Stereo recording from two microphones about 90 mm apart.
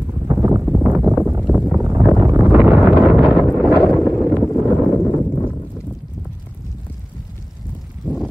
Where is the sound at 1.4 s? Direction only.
10° right (ahead or behind).